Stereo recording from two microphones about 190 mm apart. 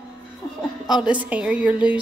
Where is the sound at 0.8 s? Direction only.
5° right (ahead or behind).